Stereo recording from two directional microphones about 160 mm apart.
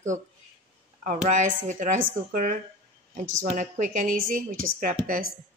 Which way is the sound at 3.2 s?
50° right (ahead or behind).